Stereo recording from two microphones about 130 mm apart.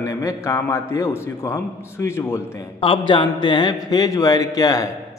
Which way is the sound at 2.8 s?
40° left (ahead or behind).